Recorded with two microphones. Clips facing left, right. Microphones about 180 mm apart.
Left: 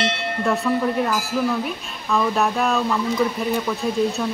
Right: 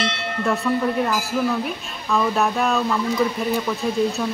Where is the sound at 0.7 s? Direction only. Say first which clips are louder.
Right 1 dB; centre (ahead or behind).